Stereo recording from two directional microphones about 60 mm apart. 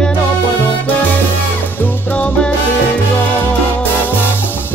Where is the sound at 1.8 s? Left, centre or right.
Left.